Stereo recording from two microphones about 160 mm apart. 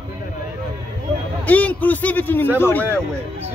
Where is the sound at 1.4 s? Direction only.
10° left (ahead or behind).